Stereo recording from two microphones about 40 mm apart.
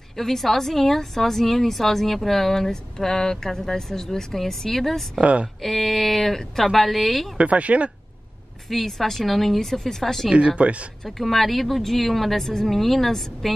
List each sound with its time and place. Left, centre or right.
0.2 s a woman's voice: centre
5.2 s speech: right
5.6 s speech: centre
7.3 s speech: right
8.6 s a woman's voice: centre
10.3 s speech: right
11.1 s speech: centre